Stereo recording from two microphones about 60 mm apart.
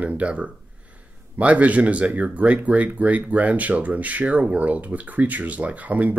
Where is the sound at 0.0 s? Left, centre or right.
Right.